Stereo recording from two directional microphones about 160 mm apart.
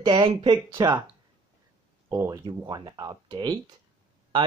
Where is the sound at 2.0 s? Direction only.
20° right (ahead or behind).